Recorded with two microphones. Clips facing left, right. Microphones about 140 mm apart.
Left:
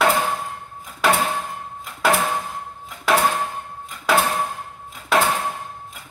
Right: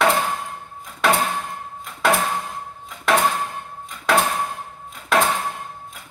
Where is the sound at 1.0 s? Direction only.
Centre (ahead or behind).